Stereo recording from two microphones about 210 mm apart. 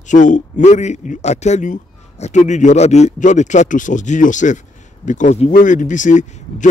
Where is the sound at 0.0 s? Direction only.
35° left (ahead or behind).